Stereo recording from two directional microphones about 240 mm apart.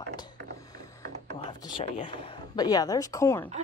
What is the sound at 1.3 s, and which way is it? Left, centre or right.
A woman's voice, centre.